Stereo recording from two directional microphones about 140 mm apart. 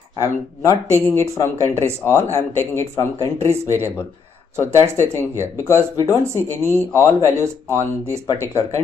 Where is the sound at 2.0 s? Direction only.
20° left (ahead or behind).